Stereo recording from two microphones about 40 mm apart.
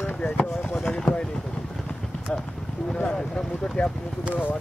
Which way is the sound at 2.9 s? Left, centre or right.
Left.